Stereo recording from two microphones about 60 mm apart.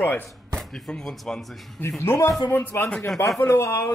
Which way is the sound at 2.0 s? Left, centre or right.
Left.